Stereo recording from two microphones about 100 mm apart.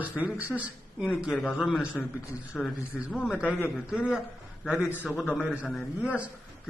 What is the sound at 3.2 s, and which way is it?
A man's voice, 10° right (ahead or behind).